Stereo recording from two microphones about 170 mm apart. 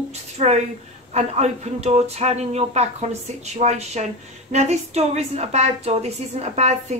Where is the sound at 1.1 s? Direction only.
40° right (ahead or behind).